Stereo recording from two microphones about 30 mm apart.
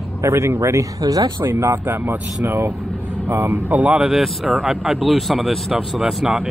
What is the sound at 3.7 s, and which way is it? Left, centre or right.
Speech, right.